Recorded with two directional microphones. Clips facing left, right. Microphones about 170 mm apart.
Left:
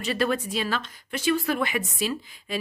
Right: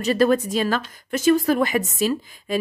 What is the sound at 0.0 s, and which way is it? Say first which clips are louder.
Speech: right 7 dB; 40° right (ahead or behind).